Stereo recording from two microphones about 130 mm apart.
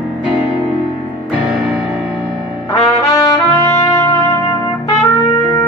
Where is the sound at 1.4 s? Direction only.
10° right (ahead or behind).